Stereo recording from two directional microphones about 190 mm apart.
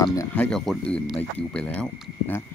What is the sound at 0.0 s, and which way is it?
Speech, 20° left (ahead or behind).